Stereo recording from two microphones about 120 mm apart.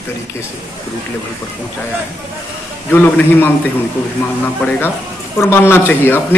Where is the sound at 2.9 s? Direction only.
15° left (ahead or behind).